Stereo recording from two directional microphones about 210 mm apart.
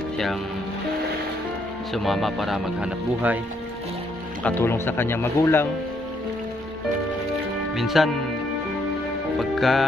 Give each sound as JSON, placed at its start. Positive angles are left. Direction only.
{"t": 2.0, "sound": "speech", "side_deg": 0}
{"t": 4.4, "sound": "speech", "side_deg": 10}
{"t": 7.7, "sound": "speech", "side_deg": 0}
{"t": 9.4, "sound": "music", "side_deg": 0}